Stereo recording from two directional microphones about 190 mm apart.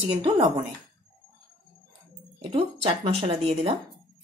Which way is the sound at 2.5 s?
30° right (ahead or behind).